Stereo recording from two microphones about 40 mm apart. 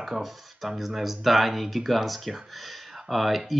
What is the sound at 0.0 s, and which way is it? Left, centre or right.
Speech, centre.